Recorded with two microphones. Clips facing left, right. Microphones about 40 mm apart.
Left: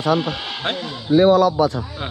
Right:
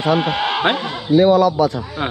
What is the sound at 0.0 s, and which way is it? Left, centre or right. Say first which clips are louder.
Speech: right 3 dB; right.